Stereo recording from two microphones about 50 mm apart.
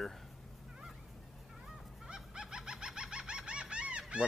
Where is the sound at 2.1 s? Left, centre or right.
Centre.